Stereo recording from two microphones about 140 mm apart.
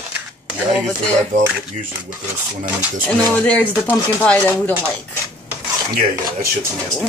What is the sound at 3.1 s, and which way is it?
Speech, 10° left (ahead or behind).